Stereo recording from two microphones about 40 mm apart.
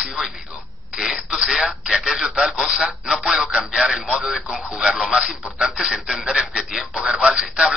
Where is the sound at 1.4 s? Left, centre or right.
Centre.